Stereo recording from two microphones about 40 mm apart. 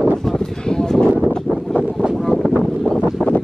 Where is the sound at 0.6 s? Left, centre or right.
Centre.